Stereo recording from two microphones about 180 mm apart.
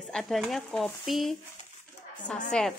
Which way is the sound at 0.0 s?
Centre (ahead or behind).